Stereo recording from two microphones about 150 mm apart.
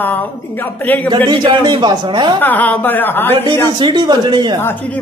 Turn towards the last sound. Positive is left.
turn(degrees=15)  # may be behind; listen again after turning